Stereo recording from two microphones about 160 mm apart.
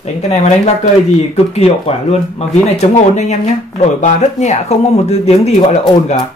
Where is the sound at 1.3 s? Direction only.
40° left (ahead or behind).